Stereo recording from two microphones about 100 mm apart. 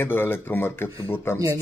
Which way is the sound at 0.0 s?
20° left (ahead or behind).